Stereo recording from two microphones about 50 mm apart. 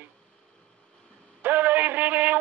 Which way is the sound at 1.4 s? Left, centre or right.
Right.